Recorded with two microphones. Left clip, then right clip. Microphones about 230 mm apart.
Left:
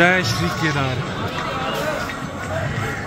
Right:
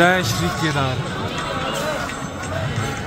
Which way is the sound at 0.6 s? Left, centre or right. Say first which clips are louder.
Right 1 dB; centre.